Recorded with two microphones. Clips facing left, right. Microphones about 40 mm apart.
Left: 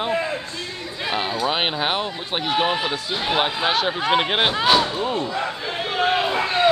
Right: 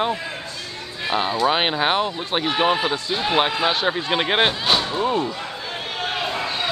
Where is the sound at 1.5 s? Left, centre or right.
Centre.